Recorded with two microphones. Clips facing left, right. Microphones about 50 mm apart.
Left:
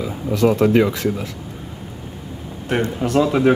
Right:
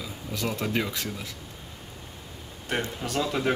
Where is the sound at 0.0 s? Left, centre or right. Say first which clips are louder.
Left 14 dB; left.